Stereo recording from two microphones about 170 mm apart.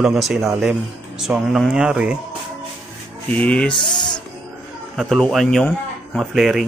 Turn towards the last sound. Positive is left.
turn(degrees=0)  # may be behind; listen again after turning